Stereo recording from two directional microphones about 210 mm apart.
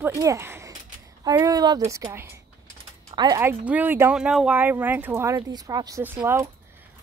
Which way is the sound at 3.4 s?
10° right (ahead or behind).